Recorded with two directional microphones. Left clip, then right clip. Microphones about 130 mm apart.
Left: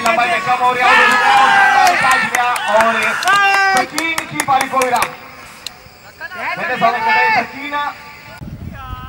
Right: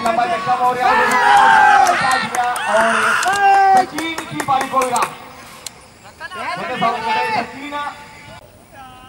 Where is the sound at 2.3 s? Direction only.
25° left (ahead or behind).